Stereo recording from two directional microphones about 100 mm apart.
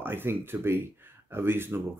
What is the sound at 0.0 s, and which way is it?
Speech, 20° right (ahead or behind).